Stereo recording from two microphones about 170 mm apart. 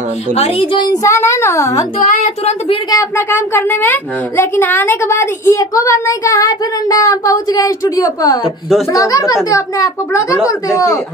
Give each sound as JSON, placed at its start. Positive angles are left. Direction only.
{"t": 0.3, "sound": "speech", "side_deg": 35}
{"t": 1.0, "sound": "a child's voice", "side_deg": 15}
{"t": 2.0, "sound": "speech", "side_deg": 45}
{"t": 2.9, "sound": "a child's voice", "side_deg": 15}